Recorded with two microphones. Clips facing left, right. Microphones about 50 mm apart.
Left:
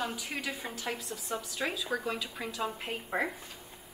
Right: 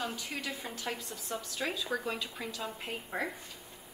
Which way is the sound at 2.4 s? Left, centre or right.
Centre.